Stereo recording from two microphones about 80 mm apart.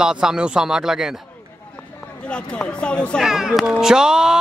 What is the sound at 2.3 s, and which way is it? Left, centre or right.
Speech, centre.